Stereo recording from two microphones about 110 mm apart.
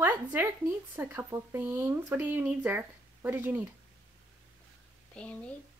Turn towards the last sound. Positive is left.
turn(degrees=10)  # may be behind; listen again after turning